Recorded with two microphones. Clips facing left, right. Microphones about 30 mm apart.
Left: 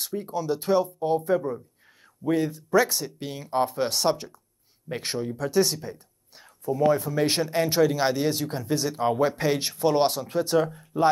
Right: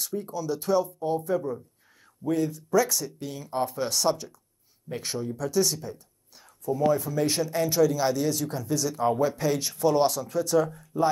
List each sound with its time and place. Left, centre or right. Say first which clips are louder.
0.0 s speech: left 2 dB; left
7.0 s speech: left 2 dB; left